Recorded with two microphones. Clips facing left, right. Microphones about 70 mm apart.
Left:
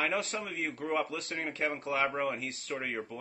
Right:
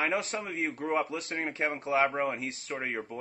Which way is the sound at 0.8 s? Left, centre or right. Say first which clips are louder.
Right 2 dB; right.